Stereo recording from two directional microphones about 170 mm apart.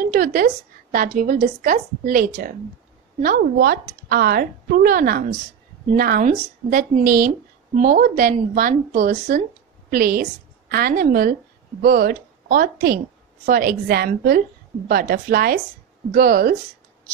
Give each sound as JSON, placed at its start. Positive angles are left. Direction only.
{"t": 0.0, "sound": "a woman's voice", "side_deg": -55}